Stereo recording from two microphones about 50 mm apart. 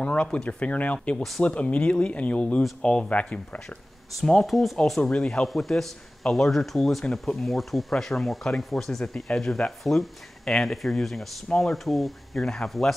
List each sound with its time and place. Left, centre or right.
0.0 s speech: left
4.2 s speech: centre
5.5 s speech: centre
11.7 s speech: centre